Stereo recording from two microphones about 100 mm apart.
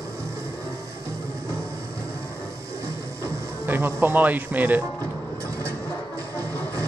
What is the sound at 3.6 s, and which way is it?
Music, 20° right (ahead or behind).